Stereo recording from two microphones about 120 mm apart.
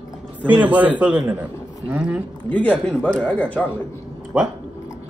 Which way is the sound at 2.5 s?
10° left (ahead or behind).